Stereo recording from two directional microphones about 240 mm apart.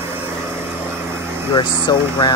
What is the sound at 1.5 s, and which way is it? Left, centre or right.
Speech, centre.